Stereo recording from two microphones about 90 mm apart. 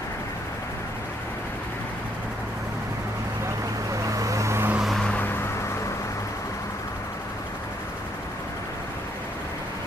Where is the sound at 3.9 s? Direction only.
35° right (ahead or behind).